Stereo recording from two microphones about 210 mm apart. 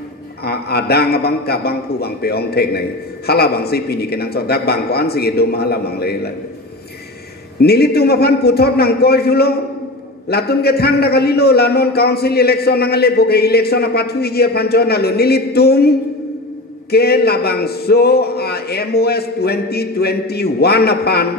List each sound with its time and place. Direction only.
0.4 s a man's voice: 50° left (ahead or behind)
7.6 s a man's voice: 50° left (ahead or behind)
16.9 s a man's voice: 50° left (ahead or behind)